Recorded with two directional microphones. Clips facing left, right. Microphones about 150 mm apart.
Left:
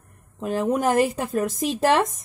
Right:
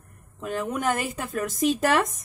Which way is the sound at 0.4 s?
30° left (ahead or behind).